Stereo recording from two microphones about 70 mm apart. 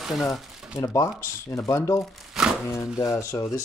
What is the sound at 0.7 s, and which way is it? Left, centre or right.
Speech, left.